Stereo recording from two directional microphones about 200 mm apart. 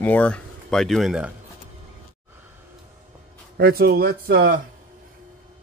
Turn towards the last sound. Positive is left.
turn(degrees=-45)  # may be behind; listen again after turning